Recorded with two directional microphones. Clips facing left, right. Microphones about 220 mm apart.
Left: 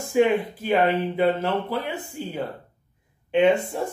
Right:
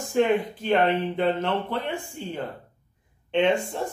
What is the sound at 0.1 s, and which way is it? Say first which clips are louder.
Speech: left 2 dB; 10° left (ahead or behind).